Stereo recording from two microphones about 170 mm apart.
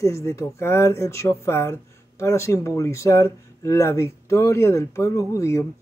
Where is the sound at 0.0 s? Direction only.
20° left (ahead or behind).